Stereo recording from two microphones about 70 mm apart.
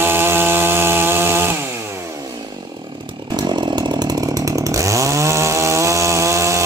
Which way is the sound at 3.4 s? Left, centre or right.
Right.